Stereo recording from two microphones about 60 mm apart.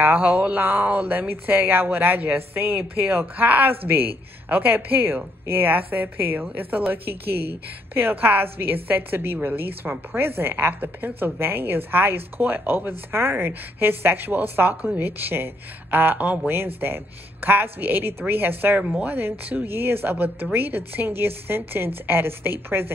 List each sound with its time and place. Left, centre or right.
0.0 s speech: right
18.8 s speech: centre
19.0 s speech: right